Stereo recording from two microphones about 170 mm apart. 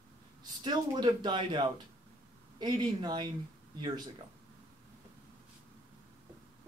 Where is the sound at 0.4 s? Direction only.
25° right (ahead or behind).